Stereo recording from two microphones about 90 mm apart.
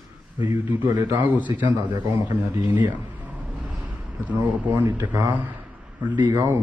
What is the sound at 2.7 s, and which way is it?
Speech, 20° right (ahead or behind).